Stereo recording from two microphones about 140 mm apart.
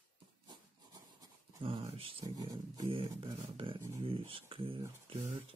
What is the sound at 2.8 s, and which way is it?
Speech, 40° right (ahead or behind).